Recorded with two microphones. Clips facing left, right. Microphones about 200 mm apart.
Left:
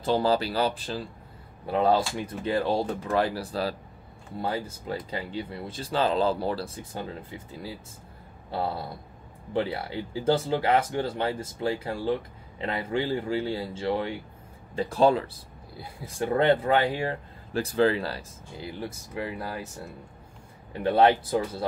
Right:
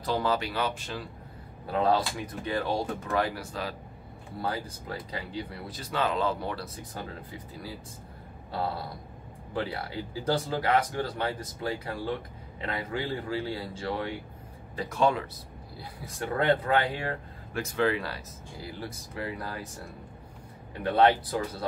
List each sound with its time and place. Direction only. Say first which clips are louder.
0.0 s speech: left 4 dB; 30° left (ahead or behind)
9.5 s speech: left 4 dB; 25° left (ahead or behind)
20.8 s speech: left 2 dB; 30° left (ahead or behind)